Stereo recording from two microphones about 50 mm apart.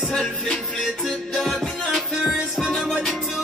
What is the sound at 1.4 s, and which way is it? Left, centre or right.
Music, centre.